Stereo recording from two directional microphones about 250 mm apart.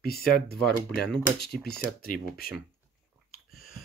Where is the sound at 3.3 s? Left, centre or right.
Left.